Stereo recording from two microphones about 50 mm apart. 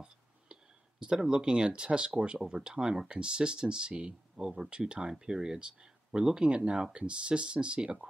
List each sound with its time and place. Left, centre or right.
0.0 s clicking: centre
1.3 s speech: centre